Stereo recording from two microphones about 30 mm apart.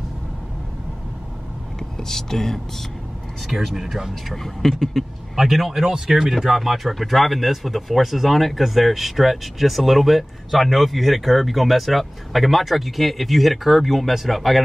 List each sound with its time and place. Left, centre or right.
2.0 s speech: centre
3.4 s speech: centre
4.1 s speech: centre
5.3 s speech: centre
5.9 s speech: centre
6.5 s speech: centre